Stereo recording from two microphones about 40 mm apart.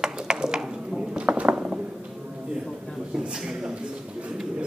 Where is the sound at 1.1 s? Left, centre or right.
Right.